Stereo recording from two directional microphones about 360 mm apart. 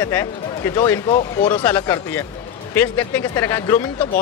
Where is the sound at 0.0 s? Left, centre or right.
Centre.